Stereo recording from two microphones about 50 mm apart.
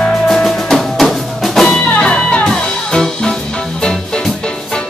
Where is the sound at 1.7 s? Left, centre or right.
Centre.